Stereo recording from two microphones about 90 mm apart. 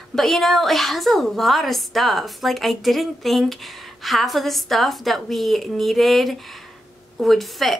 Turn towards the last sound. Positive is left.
turn(degrees=0)  # may be behind; listen again after turning